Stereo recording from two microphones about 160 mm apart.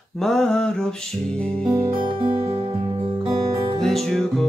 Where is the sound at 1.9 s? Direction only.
30° right (ahead or behind).